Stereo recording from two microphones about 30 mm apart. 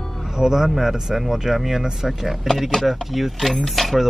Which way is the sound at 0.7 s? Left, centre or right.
Centre.